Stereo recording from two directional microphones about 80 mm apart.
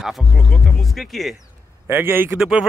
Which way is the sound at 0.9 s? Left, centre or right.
Centre.